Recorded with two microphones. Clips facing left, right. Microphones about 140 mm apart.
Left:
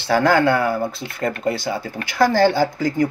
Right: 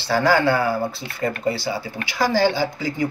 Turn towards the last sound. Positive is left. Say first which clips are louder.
# left 5 dB
turn(degrees=50)  # may be behind; listen again after turning